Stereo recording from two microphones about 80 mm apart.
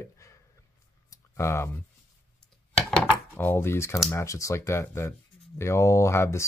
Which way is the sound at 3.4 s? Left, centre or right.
Left.